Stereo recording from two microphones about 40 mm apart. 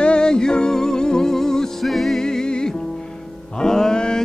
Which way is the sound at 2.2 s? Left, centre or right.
Centre.